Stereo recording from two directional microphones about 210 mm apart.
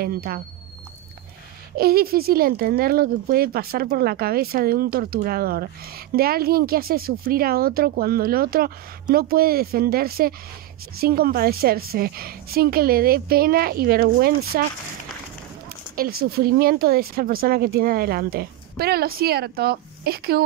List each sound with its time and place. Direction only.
0.0 s speech: 45° right (ahead or behind)
1.8 s speech: 45° right (ahead or behind)
16.2 s speech: 45° right (ahead or behind)